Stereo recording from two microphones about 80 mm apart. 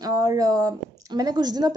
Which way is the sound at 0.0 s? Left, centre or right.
Right.